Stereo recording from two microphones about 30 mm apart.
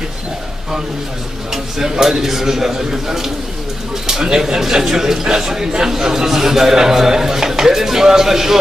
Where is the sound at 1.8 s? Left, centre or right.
Centre.